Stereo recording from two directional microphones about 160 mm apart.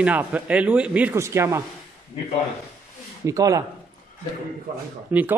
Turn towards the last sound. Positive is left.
turn(degrees=-10)  # may be behind; listen again after turning